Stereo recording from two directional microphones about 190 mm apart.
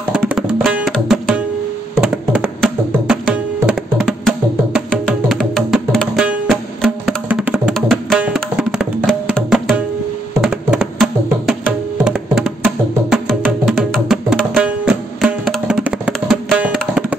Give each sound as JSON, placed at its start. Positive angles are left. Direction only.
{"t": 0.1, "sound": "tabla", "side_deg": -5}
{"t": 2.0, "sound": "music", "side_deg": -5}